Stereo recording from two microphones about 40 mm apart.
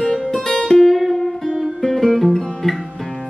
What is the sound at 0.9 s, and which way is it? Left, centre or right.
Music, centre.